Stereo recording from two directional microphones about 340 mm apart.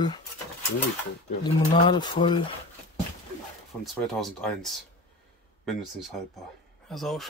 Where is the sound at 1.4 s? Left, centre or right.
Centre.